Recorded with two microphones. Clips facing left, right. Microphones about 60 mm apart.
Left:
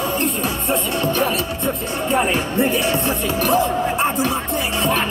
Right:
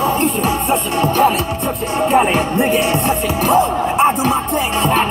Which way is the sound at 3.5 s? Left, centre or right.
Right.